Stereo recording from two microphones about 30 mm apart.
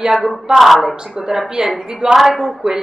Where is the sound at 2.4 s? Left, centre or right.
Right.